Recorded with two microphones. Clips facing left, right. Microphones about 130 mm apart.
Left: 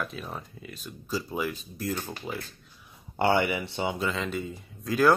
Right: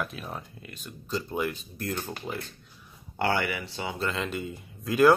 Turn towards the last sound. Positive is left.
turn(degrees=0)  # may be behind; listen again after turning